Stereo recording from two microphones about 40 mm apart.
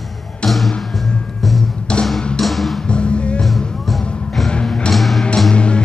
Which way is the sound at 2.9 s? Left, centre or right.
Left.